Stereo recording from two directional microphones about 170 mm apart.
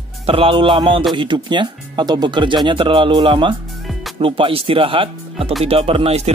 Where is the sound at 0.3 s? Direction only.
30° right (ahead or behind).